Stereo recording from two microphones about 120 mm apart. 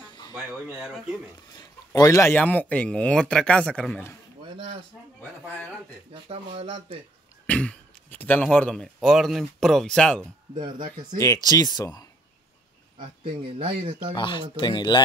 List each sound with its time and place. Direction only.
0.0 s a sound: 40° left (ahead or behind)
0.3 s speech: 5° right (ahead or behind)
2.0 s speech: 25° left (ahead or behind)
2.3 s speech: 15° left (ahead or behind)
6.2 s speech: 50° right (ahead or behind)
7.4 s a sound: 10° left (ahead or behind)
8.5 s speech: 5° left (ahead or behind)
10.5 s speech: 40° right (ahead or behind)
11.1 s speech: 30° left (ahead or behind)
13.2 s speech: 45° right (ahead or behind)
14.1 s speech: 40° left (ahead or behind)